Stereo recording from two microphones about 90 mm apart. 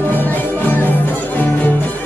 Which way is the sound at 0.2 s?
20° left (ahead or behind).